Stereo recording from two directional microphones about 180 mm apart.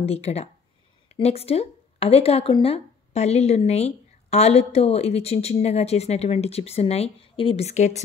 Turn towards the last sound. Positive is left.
turn(degrees=40)  # may be behind; listen again after turning